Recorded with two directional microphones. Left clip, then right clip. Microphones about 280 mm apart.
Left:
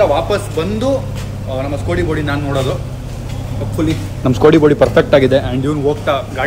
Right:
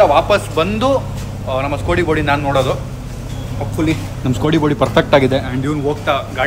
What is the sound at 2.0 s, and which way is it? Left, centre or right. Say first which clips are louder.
Speech: right 3 dB; right.